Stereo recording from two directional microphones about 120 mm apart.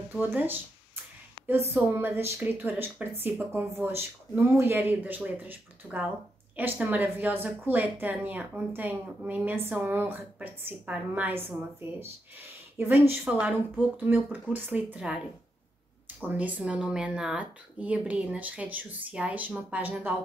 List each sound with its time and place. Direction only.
0.2 s a woman's voice: 15° right (ahead or behind)
12.7 s a woman's voice: 20° right (ahead or behind)
16.2 s a woman's voice: 15° right (ahead or behind)